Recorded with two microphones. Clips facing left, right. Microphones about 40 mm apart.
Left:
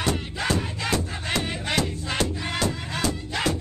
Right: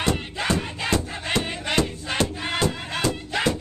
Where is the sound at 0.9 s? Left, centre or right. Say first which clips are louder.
Right 3 dB; centre.